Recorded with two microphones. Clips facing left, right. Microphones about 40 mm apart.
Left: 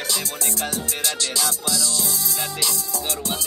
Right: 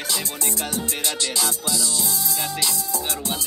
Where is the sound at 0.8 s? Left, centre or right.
Right.